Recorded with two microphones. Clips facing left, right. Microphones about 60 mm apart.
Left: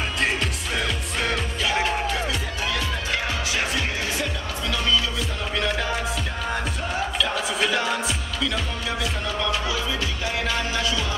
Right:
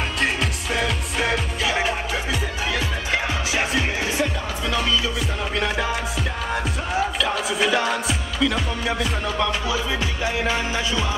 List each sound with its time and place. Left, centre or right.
0.8 s music: centre
7.2 s music: centre